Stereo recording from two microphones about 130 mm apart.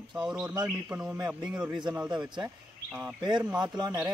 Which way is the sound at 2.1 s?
35° right (ahead or behind).